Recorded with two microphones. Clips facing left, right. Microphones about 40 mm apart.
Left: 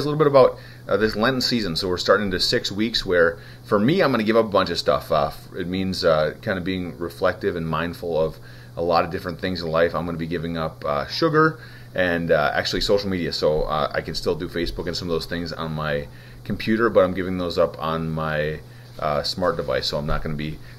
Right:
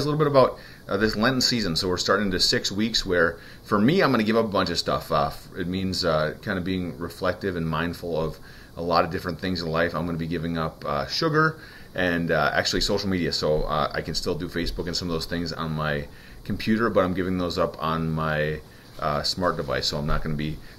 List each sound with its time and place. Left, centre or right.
0.0 s speech: centre
5.6 s speech: left